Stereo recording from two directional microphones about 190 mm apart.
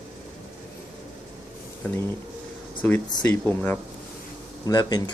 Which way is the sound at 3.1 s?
20° left (ahead or behind).